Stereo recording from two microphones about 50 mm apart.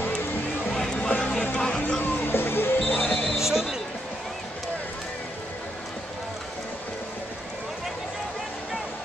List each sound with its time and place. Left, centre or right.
0.7 s music: centre
0.9 s music: left
1.6 s a sound: centre
2.0 s music: left
3.0 s music: centre
3.3 s a sound: centre